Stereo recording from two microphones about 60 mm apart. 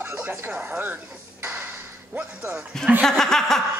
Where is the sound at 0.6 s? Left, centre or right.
Right.